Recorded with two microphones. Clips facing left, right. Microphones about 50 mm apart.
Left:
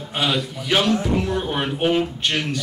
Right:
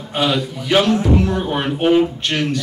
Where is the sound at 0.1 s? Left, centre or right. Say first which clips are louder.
Right 4 dB; centre.